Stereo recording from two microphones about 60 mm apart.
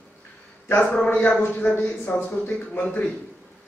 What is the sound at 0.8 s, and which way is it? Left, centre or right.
A man's voice, centre.